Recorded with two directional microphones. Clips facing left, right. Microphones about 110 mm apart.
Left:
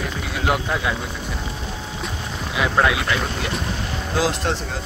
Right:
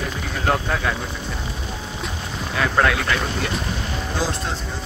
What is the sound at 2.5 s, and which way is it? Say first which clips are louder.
Speech: even; 15° left (ahead or behind).